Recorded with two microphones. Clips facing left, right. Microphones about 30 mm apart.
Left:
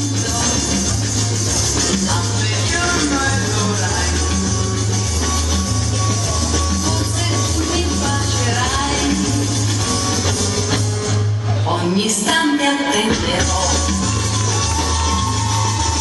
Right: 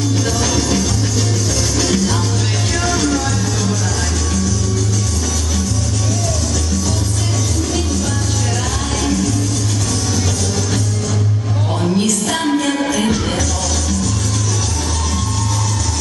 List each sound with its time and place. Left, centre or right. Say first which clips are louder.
1.8 s music: right 3 dB; centre
2.8 s music: right 1 dB; centre
11.8 s a sound: right 5 dB; left
12.5 s music: left 1 dB; centre